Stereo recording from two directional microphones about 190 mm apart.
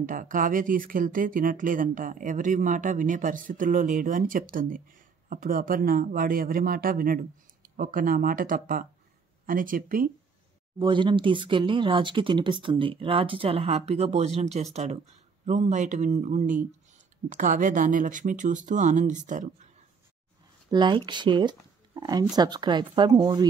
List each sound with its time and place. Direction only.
0.0 s speech: 45° right (ahead or behind)
10.8 s speech: 25° right (ahead or behind); by 19.7 s 40° right (ahead or behind)
20.7 s speech: 25° right (ahead or behind)